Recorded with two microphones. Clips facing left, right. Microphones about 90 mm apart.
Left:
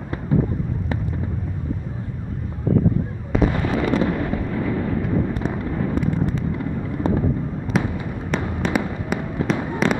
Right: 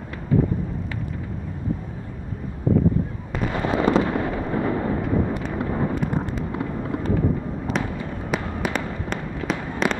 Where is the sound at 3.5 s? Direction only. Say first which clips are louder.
Even; 15° right (ahead or behind).